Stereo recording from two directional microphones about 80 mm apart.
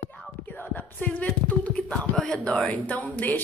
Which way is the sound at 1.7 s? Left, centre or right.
Centre.